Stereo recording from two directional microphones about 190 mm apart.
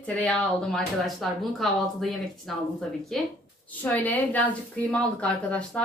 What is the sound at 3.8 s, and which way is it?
A woman's voice, 10° left (ahead or behind).